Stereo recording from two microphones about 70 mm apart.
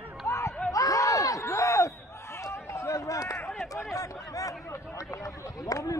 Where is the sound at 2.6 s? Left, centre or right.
Left.